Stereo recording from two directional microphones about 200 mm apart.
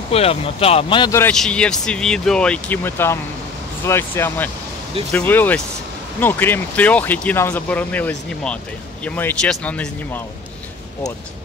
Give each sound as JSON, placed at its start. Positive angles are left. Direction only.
{"t": 0.1, "sound": "speech", "side_deg": 30}
{"t": 1.2, "sound": "speech", "side_deg": 5}